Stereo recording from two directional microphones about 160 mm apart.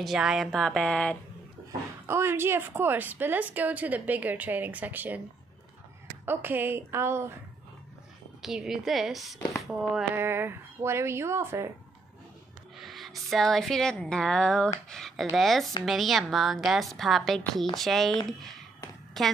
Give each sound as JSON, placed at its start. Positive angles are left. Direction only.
{"t": 0.0, "sound": "a woman's voice", "side_deg": 0}
{"t": 1.7, "sound": "a woman's voice", "side_deg": -15}
{"t": 6.2, "sound": "a woman's voice", "side_deg": -15}
{"t": 8.4, "sound": "a woman's voice", "side_deg": 0}
{"t": 10.1, "sound": "a woman's voice", "side_deg": -15}
{"t": 12.7, "sound": "a woman's voice", "side_deg": 0}